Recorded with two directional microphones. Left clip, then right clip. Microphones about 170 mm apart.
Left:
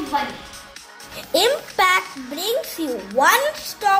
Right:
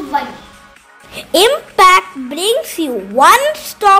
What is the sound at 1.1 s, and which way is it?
A woman's voice, 70° right (ahead or behind).